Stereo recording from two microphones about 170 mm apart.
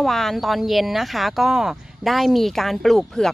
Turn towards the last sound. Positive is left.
turn(degrees=5)  # may be behind; listen again after turning